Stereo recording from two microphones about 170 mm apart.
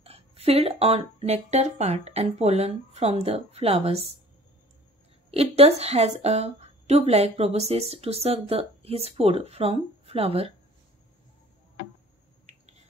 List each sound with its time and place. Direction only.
0.0 s a woman's voice: 35° right (ahead or behind)
5.3 s a woman's voice: 35° right (ahead or behind)